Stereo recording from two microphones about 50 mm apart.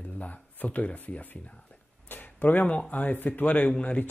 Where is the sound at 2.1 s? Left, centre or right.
Left.